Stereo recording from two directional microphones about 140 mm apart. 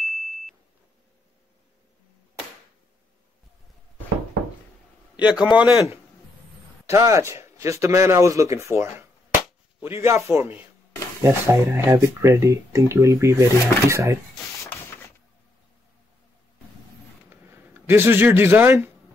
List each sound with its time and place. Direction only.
0.0 s beep: centre (ahead or behind)
5.2 s a man's voice: 10° right (ahead or behind)
6.9 s a man's voice: 20° right (ahead or behind)
17.3 s speech: 15° right (ahead or behind)